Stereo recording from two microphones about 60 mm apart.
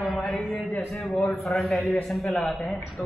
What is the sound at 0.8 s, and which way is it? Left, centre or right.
A man's voice, centre.